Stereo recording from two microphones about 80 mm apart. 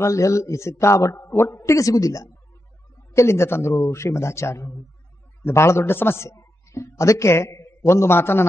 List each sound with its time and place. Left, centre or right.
0.0 s a man's voice: left
3.1 s a man's voice: left